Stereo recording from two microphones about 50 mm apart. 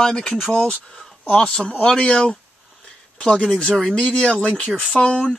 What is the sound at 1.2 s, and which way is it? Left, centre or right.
Speech, left.